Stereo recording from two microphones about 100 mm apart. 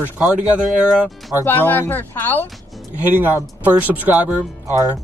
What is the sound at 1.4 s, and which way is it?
Speech, 20° left (ahead or behind).